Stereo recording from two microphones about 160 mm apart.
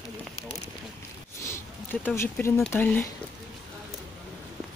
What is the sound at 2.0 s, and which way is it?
Speech, 15° left (ahead or behind).